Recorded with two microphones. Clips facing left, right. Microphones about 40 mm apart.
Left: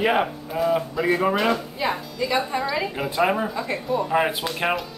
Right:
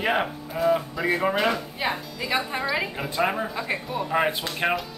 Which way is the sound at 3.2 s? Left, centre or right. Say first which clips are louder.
Left 3 dB; centre.